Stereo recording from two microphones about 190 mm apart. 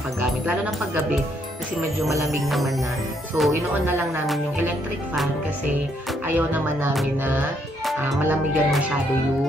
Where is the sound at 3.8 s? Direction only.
10° right (ahead or behind).